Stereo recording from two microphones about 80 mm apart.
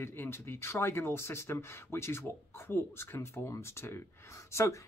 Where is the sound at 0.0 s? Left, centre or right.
Left.